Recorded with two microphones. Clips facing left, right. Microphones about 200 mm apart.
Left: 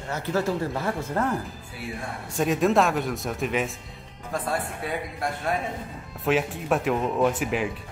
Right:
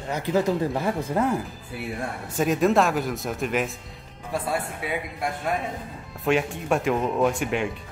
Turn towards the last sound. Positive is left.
turn(degrees=0)  # may be behind; listen again after turning